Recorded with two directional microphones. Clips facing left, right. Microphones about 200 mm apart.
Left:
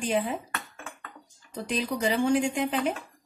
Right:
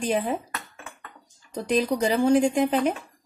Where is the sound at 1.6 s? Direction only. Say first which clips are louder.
Right 5 dB; 40° right (ahead or behind).